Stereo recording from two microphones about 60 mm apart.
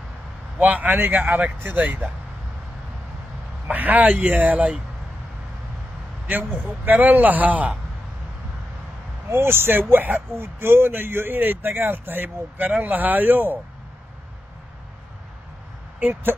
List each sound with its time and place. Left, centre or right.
0.6 s speech: right
3.7 s speech: right
6.9 s speech: right
9.3 s speech: right
16.0 s speech: right